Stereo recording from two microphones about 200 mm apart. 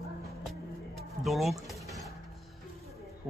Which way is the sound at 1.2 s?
Centre (ahead or behind).